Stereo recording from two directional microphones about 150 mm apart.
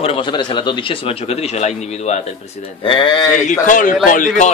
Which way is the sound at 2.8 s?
35° left (ahead or behind).